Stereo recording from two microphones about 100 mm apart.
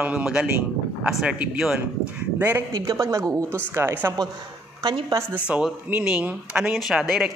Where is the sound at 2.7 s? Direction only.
40° right (ahead or behind).